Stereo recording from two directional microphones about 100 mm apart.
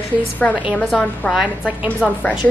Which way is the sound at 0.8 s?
10° left (ahead or behind).